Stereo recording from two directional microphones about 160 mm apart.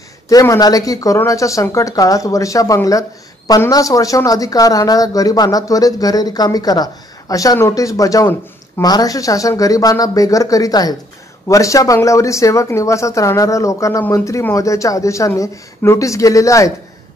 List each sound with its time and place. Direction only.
0.3 s speech: 20° left (ahead or behind)